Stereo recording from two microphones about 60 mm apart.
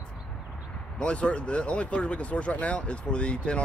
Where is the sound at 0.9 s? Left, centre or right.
Centre.